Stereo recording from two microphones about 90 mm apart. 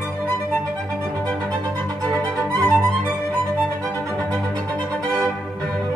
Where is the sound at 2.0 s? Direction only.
15° left (ahead or behind).